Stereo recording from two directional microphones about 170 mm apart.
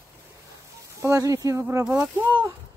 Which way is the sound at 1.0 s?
20° right (ahead or behind).